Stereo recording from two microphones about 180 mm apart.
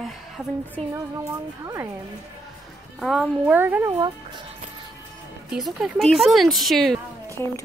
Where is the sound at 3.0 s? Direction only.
Centre (ahead or behind).